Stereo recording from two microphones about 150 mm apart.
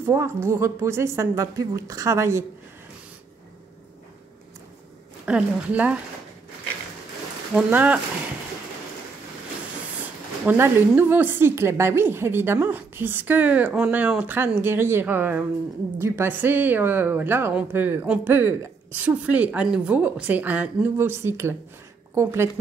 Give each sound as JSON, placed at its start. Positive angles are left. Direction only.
{"t": 0.0, "sound": "a woman's voice", "side_deg": -20}
{"t": 5.2, "sound": "a woman's voice", "side_deg": -10}
{"t": 7.5, "sound": "a woman's voice", "side_deg": -10}
{"t": 10.4, "sound": "a woman's voice", "side_deg": -10}